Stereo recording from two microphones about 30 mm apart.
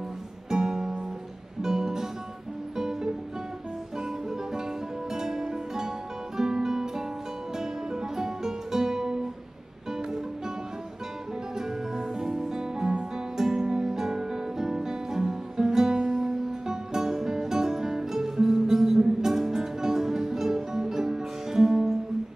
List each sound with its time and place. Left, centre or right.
0.5 s music: right
4.3 s music: centre
11.5 s music: centre